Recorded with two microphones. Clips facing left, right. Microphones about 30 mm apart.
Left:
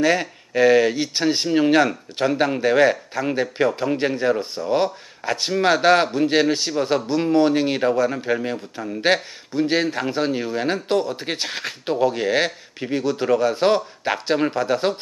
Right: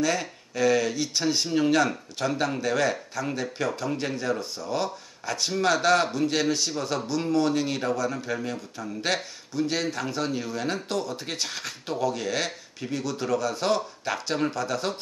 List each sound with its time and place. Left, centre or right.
0.0 s a man's voice: left